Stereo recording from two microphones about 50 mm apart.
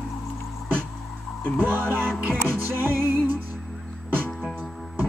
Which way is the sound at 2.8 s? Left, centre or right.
Right.